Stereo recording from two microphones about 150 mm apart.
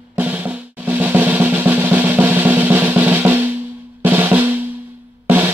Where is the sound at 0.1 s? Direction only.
10° right (ahead or behind).